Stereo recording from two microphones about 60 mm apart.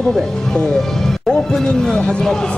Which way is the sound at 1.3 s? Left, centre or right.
Centre.